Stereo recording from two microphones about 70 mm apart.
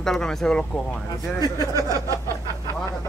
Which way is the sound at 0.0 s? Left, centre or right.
Centre.